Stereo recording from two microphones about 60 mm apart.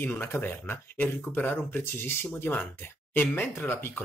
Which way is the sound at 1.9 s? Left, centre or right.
Left.